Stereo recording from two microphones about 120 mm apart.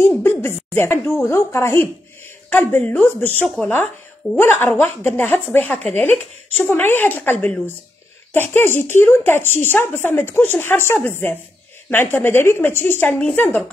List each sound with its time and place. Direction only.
0.2 s a woman's voice: 20° left (ahead or behind)